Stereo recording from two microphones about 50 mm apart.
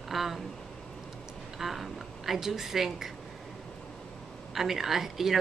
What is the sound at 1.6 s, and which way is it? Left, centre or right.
Speech, centre.